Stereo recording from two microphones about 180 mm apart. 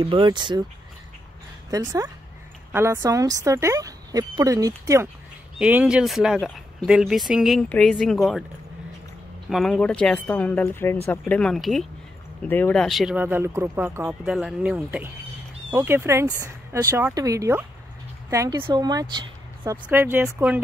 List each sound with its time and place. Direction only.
0.0 s speech: 30° right (ahead or behind)
1.7 s speech: 15° right (ahead or behind)
5.6 s speech: 5° right (ahead or behind)
9.5 s speech: centre (ahead or behind)